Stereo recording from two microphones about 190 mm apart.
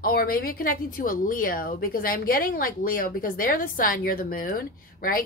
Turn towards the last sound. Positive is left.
turn(degrees=50)  # may be behind; listen again after turning